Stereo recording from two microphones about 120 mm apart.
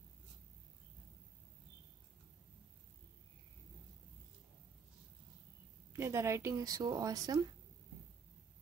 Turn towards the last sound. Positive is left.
turn(degrees=-30)  # may be behind; listen again after turning